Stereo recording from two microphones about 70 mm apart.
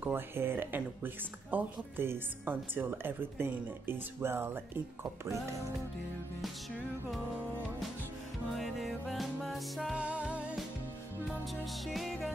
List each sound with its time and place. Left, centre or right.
0.0 s speech: right
8.5 s music: centre
9.9 s music: centre
11.2 s music: centre